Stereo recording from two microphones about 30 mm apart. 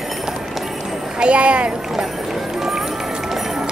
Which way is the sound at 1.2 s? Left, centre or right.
Right.